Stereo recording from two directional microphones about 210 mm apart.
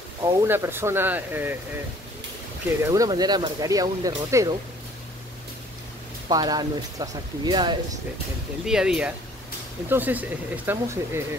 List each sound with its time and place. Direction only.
0.2 s speech: 15° right (ahead or behind)
2.8 s speech: 15° right (ahead or behind)
6.2 s speech: 20° right (ahead or behind)
8.6 s speech: 5° right (ahead or behind)